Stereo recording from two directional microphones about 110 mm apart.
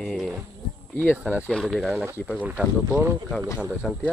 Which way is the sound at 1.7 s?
Centre (ahead or behind).